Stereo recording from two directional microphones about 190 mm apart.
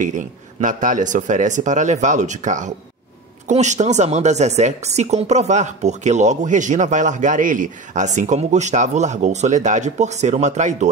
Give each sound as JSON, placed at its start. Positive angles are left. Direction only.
{"t": 0.0, "sound": "speech", "side_deg": -40}